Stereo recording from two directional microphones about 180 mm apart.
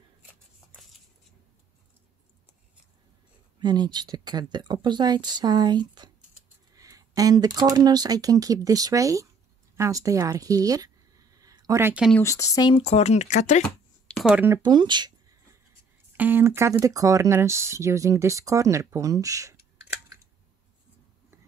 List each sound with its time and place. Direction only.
3.5 s speech: 25° right (ahead or behind)
12.2 s speech: 15° left (ahead or behind)
12.7 s speech: 35° left (ahead or behind)
14.0 s speech: centre (ahead or behind)
14.6 s speech: 25° right (ahead or behind)
16.2 s speech: 10° right (ahead or behind)